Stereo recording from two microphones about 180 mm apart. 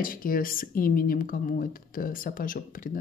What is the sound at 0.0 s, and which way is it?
Speech, 50° left (ahead or behind).